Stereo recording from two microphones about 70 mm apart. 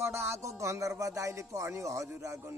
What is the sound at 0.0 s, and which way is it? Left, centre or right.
Speech, right.